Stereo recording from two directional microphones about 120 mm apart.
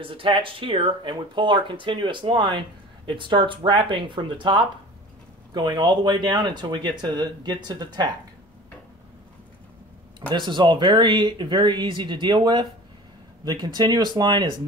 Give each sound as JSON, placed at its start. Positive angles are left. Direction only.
{"t": 0.0, "sound": "speech", "side_deg": -45}
{"t": 10.3, "sound": "speech", "side_deg": -40}